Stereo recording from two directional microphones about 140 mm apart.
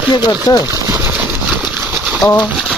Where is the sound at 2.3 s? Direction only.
10° left (ahead or behind).